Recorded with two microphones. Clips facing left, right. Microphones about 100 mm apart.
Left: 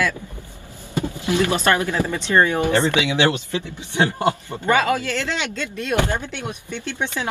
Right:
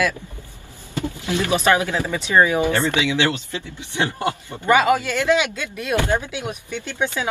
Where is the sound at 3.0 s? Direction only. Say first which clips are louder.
Left 1 dB; 20° left (ahead or behind).